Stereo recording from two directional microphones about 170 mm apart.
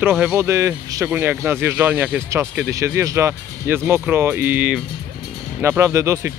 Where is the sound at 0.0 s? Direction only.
10° right (ahead or behind).